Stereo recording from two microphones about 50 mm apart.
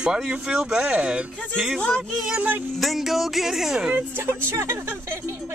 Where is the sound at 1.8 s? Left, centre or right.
Left.